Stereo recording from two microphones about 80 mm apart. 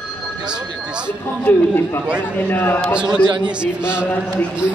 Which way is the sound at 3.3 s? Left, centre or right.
Right.